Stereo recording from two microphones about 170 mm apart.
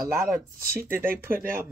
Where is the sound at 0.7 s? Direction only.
15° right (ahead or behind).